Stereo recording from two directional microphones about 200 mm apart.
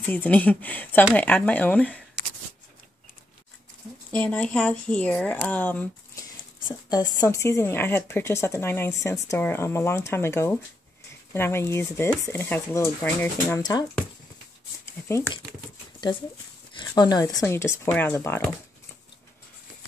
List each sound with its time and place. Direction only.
0.0 s speech: 10° left (ahead or behind)
4.1 s speech: 5° left (ahead or behind)
6.7 s speech: 20° left (ahead or behind)
14.9 s speech: 15° left (ahead or behind)
16.7 s speech: 20° left (ahead or behind)